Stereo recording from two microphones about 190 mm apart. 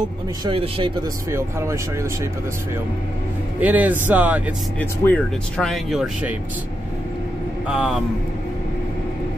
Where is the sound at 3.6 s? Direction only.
10° right (ahead or behind).